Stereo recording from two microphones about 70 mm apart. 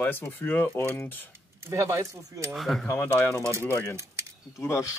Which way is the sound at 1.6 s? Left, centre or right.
Right.